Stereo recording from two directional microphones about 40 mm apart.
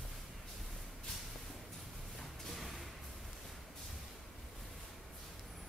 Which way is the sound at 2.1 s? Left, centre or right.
Centre.